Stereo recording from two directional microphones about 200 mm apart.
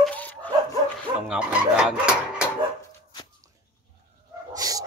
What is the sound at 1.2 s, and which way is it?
Speech, 5° right (ahead or behind).